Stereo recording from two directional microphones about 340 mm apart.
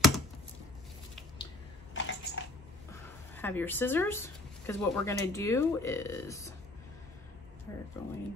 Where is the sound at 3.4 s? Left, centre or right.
Centre.